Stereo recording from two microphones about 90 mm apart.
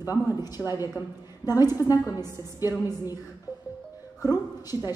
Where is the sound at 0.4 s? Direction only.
45° left (ahead or behind).